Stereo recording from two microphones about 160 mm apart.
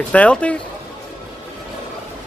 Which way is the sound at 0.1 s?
10° left (ahead or behind).